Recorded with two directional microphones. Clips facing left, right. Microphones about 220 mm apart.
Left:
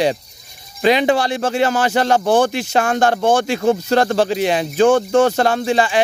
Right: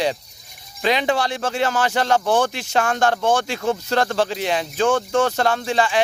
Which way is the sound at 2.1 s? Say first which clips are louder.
Left 4 dB; 35° left (ahead or behind).